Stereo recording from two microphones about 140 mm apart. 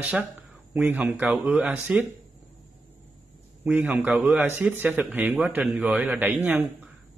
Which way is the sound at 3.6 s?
10° right (ahead or behind).